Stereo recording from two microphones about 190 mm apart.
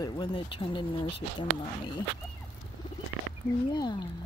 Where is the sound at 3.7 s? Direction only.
20° left (ahead or behind).